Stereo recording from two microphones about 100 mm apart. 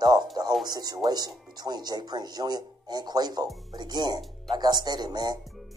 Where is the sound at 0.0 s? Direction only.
45° right (ahead or behind).